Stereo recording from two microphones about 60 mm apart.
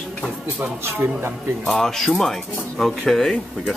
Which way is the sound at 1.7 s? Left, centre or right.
Centre.